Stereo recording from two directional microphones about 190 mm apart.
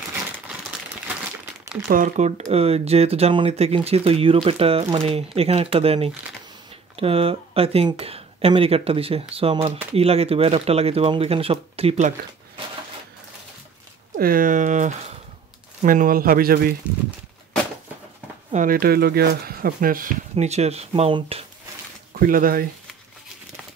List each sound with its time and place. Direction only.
1.0 s crumpling: 5° right (ahead or behind)
1.9 s speech: 40° right (ahead or behind)
14.1 s speech: 45° right (ahead or behind)
18.5 s speech: 45° right (ahead or behind)
22.1 s speech: 45° right (ahead or behind)